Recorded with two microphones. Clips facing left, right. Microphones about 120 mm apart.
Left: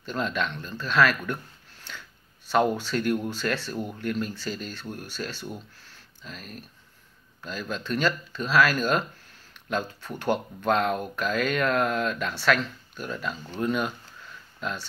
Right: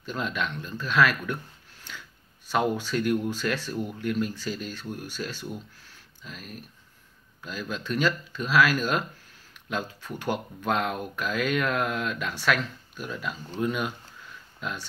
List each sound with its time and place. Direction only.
0.0 s speech: 10° right (ahead or behind)
1.9 s a sound: 10° right (ahead or behind)
2.5 s speech: 10° right (ahead or behind)